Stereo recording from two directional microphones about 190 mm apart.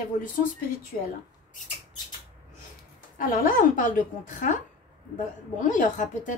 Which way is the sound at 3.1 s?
45° left (ahead or behind).